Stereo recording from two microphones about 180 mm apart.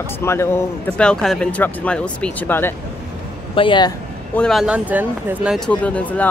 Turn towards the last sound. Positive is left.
turn(degrees=10)  # may be behind; listen again after turning